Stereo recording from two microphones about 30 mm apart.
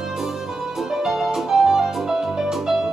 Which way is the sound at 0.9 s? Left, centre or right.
Centre.